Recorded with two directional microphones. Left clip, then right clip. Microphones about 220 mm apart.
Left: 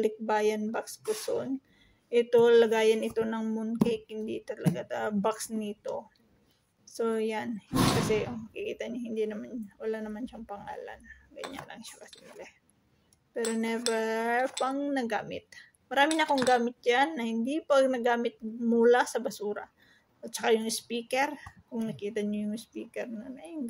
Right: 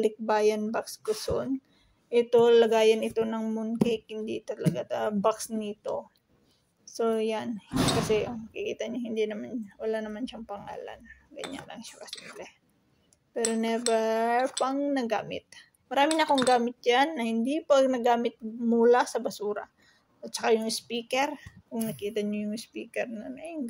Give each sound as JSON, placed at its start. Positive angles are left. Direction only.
{"t": 0.0, "sound": "a woman's voice", "side_deg": -5}